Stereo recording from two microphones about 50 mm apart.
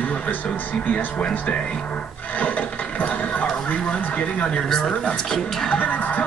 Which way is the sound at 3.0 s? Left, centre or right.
Left.